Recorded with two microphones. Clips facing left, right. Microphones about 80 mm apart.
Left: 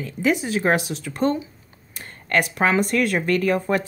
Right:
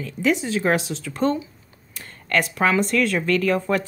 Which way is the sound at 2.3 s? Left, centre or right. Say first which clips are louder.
Even; centre.